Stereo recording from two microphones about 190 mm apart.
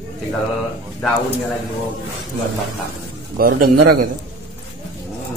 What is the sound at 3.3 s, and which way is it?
Speech, 50° right (ahead or behind).